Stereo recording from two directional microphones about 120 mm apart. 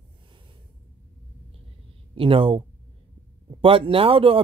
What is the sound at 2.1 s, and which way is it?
Speech, 45° right (ahead or behind).